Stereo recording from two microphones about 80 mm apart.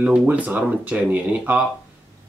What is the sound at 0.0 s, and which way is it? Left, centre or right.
Speech, centre.